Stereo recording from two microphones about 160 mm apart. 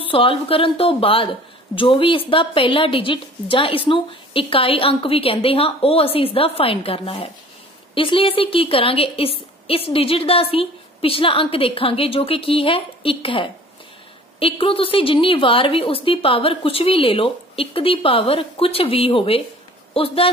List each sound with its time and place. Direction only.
0.0 s a woman's voice: 35° left (ahead or behind)